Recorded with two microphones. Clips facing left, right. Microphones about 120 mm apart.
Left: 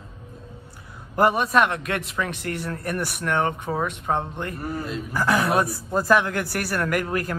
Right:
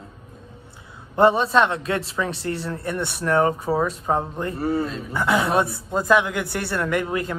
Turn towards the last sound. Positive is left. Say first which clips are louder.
# right 1 dB
turn(degrees=-25)  # may be behind; listen again after turning